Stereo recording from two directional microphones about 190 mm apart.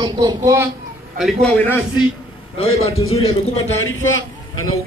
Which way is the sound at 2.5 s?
30° left (ahead or behind).